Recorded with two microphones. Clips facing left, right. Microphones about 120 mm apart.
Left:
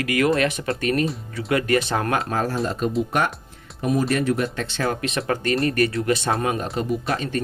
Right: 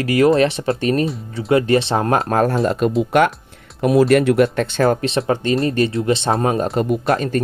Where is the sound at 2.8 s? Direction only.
75° right (ahead or behind).